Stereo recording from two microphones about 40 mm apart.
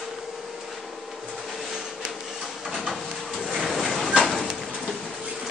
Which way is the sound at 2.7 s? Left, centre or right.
Centre.